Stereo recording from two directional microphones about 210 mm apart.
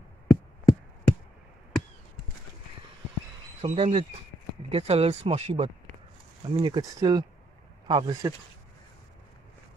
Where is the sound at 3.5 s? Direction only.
30° right (ahead or behind).